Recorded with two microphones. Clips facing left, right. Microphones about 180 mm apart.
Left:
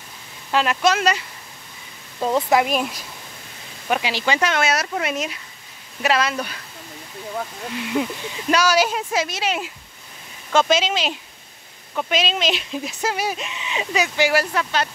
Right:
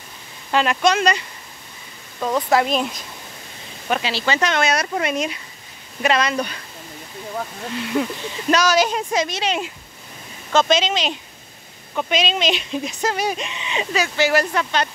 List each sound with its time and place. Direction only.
0.5 s speech: centre (ahead or behind)
2.1 s speech: 25° left (ahead or behind)
2.6 s speech: 10° left (ahead or behind)
8.0 s speech: 10° left (ahead or behind)
13.9 s speech: 15° left (ahead or behind)